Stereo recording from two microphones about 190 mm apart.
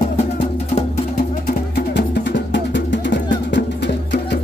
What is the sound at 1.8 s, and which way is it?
Music, 65° left (ahead or behind).